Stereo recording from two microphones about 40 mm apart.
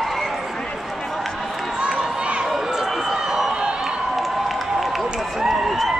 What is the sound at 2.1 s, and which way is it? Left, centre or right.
Run, right.